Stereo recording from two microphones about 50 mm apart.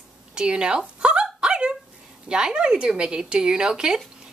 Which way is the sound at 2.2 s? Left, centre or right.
Centre.